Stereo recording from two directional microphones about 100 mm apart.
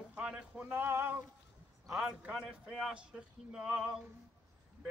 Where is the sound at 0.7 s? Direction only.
20° right (ahead or behind).